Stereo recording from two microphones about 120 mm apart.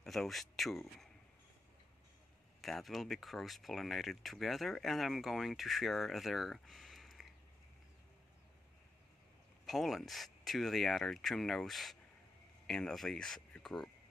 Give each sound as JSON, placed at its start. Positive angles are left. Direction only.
{"t": 0.0, "sound": "speech", "side_deg": 5}
{"t": 2.6, "sound": "speech", "side_deg": 0}
{"t": 9.7, "sound": "speech", "side_deg": 0}